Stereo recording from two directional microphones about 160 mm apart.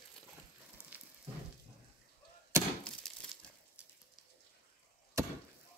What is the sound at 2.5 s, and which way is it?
Chop, 15° right (ahead or behind).